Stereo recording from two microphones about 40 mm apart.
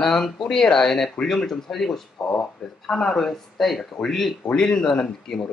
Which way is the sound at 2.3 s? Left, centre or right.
Centre.